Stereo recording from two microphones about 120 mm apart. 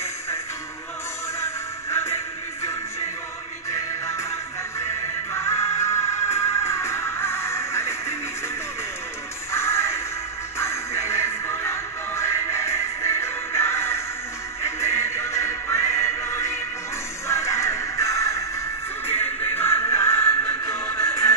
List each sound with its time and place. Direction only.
1.4 s music: 20° left (ahead or behind)
3.7 s music: 25° left (ahead or behind)
5.3 s music: 20° left (ahead or behind)
9.5 s music: 25° left (ahead or behind)